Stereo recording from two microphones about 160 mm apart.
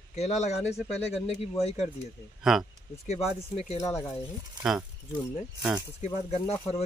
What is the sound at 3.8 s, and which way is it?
Speech, 15° left (ahead or behind).